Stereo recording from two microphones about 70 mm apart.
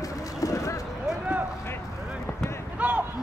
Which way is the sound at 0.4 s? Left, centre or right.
Left.